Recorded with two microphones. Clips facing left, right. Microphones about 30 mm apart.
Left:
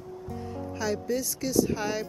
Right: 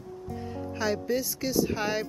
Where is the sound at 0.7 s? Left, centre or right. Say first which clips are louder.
Right 1 dB; centre.